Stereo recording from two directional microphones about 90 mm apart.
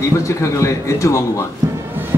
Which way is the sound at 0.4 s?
35° left (ahead or behind).